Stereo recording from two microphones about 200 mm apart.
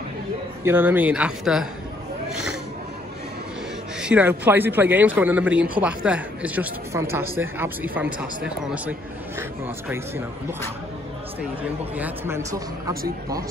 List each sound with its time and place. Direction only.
0.7 s speech: 10° right (ahead or behind)
4.0 s speech: 10° right (ahead or behind)
11.8 s speech: 10° right (ahead or behind)